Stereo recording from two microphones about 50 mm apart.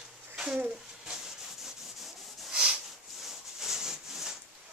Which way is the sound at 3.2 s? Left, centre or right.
Centre.